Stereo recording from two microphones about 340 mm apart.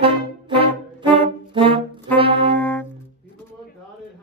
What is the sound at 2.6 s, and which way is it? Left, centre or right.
Brass instrument, centre.